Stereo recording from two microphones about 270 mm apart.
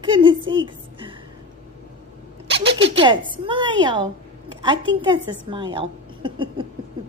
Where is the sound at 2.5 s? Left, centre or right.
Right.